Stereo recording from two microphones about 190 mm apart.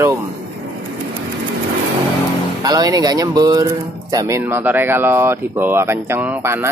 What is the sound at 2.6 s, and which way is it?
Speech, 20° right (ahead or behind).